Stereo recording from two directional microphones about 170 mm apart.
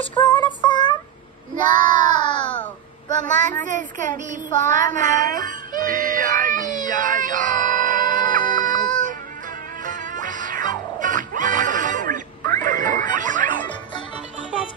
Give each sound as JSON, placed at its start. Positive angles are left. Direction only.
{"t": 0.1, "sound": "female singing", "side_deg": 25}
{"t": 1.6, "sound": "child singing", "side_deg": 25}
{"t": 3.6, "sound": "speech", "side_deg": -50}
{"t": 4.6, "sound": "music", "side_deg": -50}